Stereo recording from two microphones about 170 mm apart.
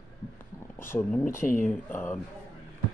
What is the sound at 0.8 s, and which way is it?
Speech, 15° left (ahead or behind).